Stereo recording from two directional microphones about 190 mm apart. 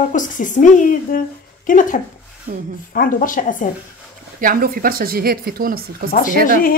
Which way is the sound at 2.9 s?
45° left (ahead or behind).